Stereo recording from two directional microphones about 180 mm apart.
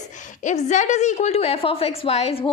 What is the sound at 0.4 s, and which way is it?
A woman's voice, 45° left (ahead or behind).